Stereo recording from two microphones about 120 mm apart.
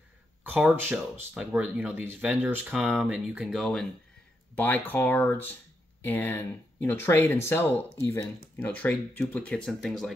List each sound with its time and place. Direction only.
0.4 s speech: 15° right (ahead or behind)
4.6 s speech: 15° left (ahead or behind)